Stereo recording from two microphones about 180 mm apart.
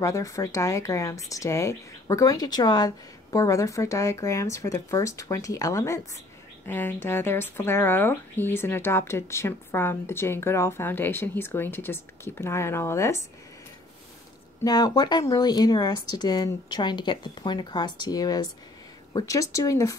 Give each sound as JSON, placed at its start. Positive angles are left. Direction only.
{"t": 0.0, "sound": "speech", "side_deg": 15}
{"t": 14.6, "sound": "speech", "side_deg": 20}